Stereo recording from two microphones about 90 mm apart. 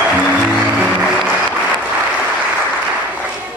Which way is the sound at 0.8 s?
5° right (ahead or behind).